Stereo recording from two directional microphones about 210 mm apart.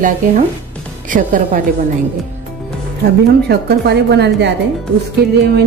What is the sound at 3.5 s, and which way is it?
A woman's voice, 50° right (ahead or behind).